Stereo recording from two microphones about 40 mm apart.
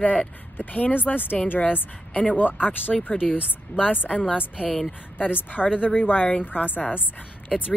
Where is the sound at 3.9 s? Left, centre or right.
Left.